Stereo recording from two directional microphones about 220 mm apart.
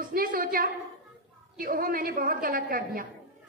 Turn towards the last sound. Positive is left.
turn(degrees=-40)  # may be behind; listen again after turning